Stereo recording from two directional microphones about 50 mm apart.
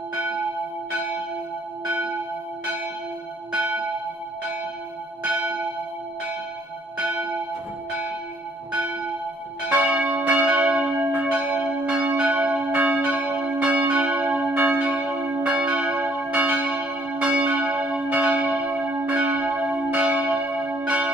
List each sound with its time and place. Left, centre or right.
0.1 s church bell: right
3.5 s church bell: right
5.2 s church bell: right
7.0 s church bell: right
8.7 s church bell: right